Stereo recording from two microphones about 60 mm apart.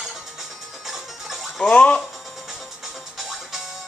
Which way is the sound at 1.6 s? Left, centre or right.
Centre.